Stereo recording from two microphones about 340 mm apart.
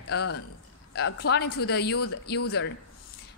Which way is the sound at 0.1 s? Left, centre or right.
Left.